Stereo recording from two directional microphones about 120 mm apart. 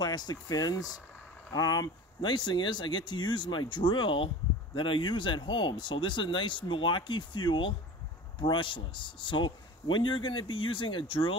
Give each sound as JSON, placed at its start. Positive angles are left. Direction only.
{"t": 0.0, "sound": "speech", "side_deg": 35}